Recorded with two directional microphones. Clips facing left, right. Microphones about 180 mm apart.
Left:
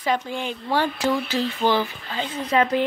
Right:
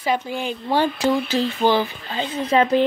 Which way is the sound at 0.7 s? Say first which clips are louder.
Right 3 dB; 20° right (ahead or behind).